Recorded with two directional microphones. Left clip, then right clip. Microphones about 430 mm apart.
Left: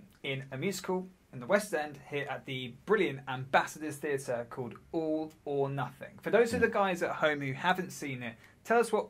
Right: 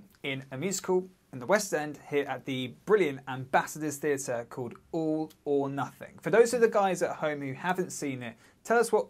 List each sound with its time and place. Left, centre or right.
0.2 s speech: right